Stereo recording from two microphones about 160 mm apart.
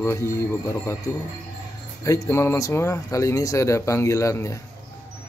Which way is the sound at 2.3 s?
15° left (ahead or behind).